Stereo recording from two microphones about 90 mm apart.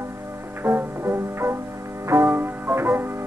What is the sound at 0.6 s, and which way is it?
Music, 25° right (ahead or behind).